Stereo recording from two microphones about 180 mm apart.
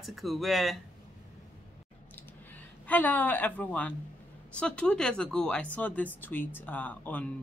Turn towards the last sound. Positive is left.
turn(degrees=10)  # may be behind; listen again after turning